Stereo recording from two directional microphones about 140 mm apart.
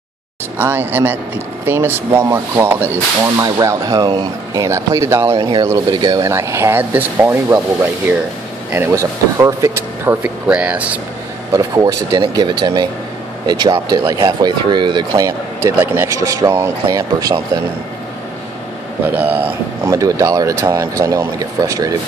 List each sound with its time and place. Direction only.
0.6 s speech: 15° right (ahead or behind); by 4.6 s 30° right (ahead or behind)
4.6 s speech: 20° right (ahead or behind)
11.5 s speech: 25° right (ahead or behind)
19.0 s speech: 10° right (ahead or behind)
19.9 s speech: 25° right (ahead or behind)